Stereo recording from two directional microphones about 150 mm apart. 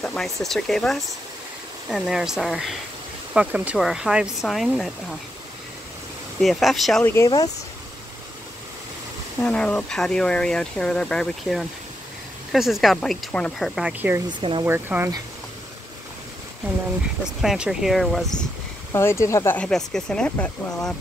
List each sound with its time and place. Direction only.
0.0 s speech: 5° left (ahead or behind)
6.4 s speech: centre (ahead or behind)
7.0 s speech: 15° left (ahead or behind)
7.2 s speech: 25° left (ahead or behind)
9.4 s speech: 10° left (ahead or behind); by 15.1 s 15° right (ahead or behind)
17.4 s speech: 5° right (ahead or behind)
18.9 s speech: 15° left (ahead or behind)